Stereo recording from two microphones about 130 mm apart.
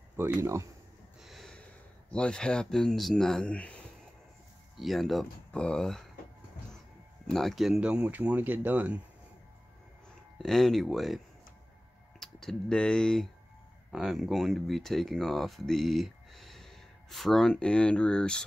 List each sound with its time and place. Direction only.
0.2 s speech: 20° right (ahead or behind)
1.2 s snort: centre (ahead or behind)
2.0 s speech: 5° left (ahead or behind)
7.2 s speech: centre (ahead or behind)
10.4 s speech: 5° left (ahead or behind)